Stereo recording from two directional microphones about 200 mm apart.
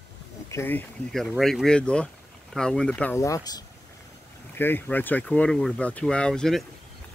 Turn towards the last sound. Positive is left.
turn(degrees=0)  # may be behind; listen again after turning